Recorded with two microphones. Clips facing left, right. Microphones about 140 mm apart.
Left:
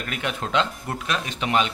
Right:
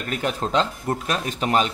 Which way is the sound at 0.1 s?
35° right (ahead or behind).